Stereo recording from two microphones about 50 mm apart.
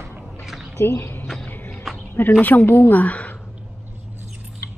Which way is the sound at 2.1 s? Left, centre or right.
Left.